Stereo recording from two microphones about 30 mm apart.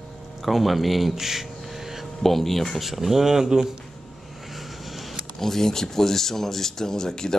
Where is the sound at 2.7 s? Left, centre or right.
Centre.